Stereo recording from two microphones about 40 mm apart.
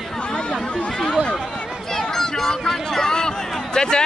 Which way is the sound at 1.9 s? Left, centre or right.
Centre.